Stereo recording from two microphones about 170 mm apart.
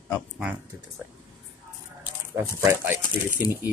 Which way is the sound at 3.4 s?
10° right (ahead or behind).